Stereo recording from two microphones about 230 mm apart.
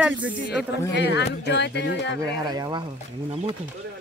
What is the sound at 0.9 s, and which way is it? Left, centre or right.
Speech, left.